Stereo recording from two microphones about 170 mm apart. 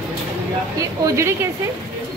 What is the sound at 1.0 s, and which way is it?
Speech, 20° right (ahead or behind).